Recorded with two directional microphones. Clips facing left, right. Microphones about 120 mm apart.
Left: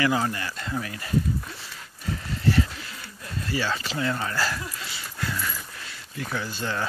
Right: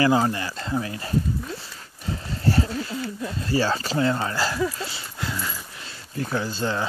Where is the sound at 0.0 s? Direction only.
30° right (ahead or behind).